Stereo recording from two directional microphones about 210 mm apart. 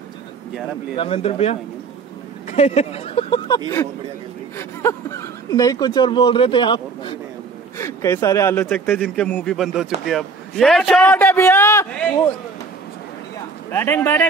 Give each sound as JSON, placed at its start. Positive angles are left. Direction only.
{"t": 0.9, "sound": "a man's voice", "side_deg": 25}
{"t": 13.7, "sound": "a man's voice", "side_deg": 10}